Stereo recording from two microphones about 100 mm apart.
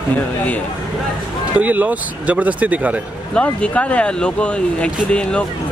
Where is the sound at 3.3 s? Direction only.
15° left (ahead or behind).